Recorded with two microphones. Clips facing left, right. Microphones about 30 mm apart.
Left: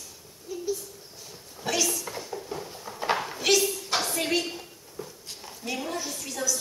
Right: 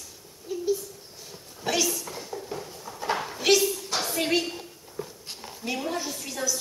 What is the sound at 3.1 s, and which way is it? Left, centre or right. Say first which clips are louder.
Dishes: left 1 dB; centre.